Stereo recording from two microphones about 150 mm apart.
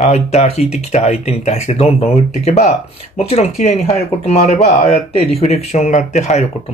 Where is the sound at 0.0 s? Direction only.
45° left (ahead or behind).